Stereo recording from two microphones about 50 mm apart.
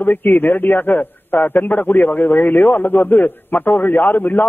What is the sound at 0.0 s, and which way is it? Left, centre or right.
A man's voice, left.